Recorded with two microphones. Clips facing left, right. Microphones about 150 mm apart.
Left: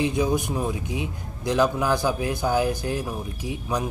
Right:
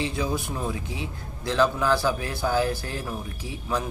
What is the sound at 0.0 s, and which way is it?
A man's voice, 20° left (ahead or behind).